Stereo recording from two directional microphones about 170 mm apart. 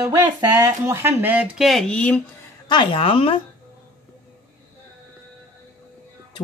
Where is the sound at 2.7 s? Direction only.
30° left (ahead or behind).